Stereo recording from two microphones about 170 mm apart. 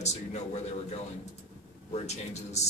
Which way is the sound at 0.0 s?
40° left (ahead or behind).